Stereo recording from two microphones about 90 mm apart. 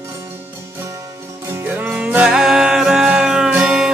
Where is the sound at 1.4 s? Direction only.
30° right (ahead or behind).